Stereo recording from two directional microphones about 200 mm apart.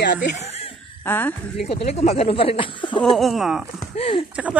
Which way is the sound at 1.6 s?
30° left (ahead or behind).